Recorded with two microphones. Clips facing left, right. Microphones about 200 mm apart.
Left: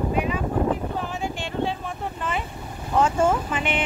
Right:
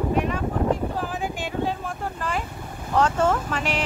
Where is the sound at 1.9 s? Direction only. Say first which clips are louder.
Even; centre (ahead or behind).